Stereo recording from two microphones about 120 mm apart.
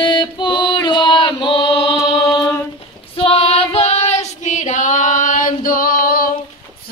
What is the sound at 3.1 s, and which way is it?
Female singing, 50° left (ahead or behind).